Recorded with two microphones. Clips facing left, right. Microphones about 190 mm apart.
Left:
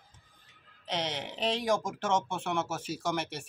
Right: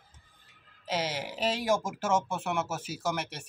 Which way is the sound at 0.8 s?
5° right (ahead or behind).